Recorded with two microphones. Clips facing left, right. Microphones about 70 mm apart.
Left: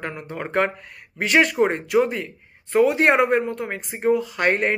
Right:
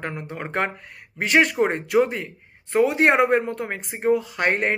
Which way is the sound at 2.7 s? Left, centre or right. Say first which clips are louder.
Left 1 dB; right.